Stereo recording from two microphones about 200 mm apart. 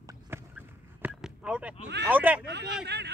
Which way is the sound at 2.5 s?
60° right (ahead or behind).